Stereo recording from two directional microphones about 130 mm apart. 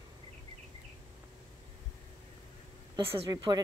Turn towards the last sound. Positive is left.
turn(degrees=-30)  # may be behind; listen again after turning